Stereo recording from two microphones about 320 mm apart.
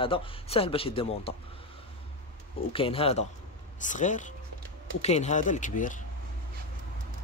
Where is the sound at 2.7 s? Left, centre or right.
Centre.